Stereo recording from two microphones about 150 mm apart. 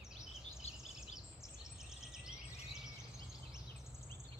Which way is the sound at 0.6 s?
45° left (ahead or behind).